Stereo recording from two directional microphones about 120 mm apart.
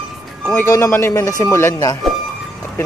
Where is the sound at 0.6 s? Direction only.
20° left (ahead or behind).